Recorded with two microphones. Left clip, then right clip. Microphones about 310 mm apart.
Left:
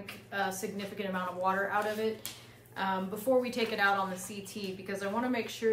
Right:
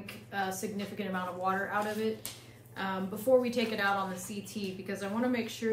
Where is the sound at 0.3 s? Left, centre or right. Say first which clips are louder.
Left 1 dB; centre.